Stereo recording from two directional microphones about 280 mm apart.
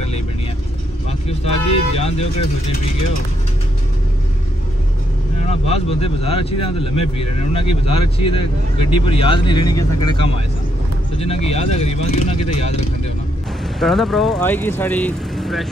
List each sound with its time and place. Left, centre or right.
1.7 s speech: left
5.5 s speech: left
13.7 s speech: centre